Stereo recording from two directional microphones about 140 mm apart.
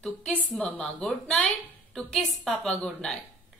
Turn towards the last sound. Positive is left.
turn(degrees=5)  # may be behind; listen again after turning